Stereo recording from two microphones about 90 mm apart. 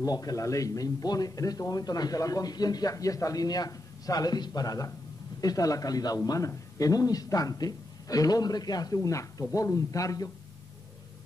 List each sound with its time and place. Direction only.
0.0 s a man's voice: 45° left (ahead or behind)